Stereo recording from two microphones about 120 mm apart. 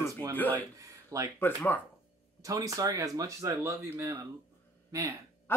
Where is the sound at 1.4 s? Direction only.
15° left (ahead or behind).